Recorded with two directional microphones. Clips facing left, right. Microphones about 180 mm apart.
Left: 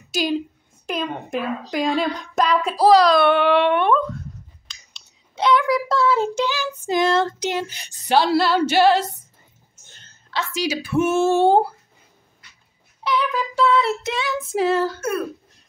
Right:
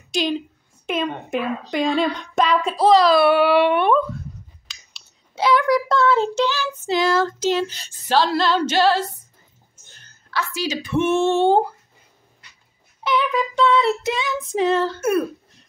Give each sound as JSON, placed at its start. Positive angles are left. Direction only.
{"t": 0.1, "sound": "a woman's voice", "side_deg": 0}
{"t": 0.8, "sound": "child singing", "side_deg": 0}
{"t": 4.6, "sound": "a child's voice", "side_deg": -5}
{"t": 7.3, "sound": "female singing", "side_deg": 15}
{"t": 9.9, "sound": "a sound", "side_deg": 20}
{"t": 10.8, "sound": "child singing", "side_deg": 0}
{"t": 11.3, "sound": "female singing", "side_deg": 15}
{"t": 13.0, "sound": "child singing", "side_deg": 0}